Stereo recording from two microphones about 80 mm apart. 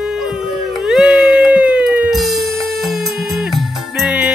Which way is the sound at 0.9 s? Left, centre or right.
Centre.